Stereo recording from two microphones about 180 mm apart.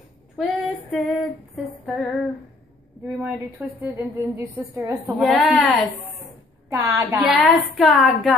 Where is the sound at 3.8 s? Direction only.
20° right (ahead or behind).